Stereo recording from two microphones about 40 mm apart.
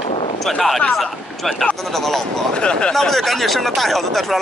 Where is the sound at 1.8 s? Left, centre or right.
Centre.